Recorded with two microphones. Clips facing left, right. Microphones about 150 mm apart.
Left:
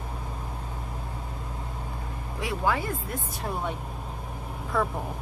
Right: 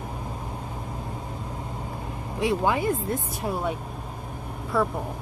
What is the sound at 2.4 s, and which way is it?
Speech, 20° right (ahead or behind).